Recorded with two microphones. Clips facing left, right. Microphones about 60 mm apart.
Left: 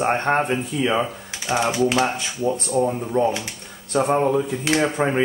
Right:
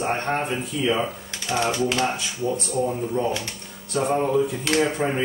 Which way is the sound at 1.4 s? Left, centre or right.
Centre.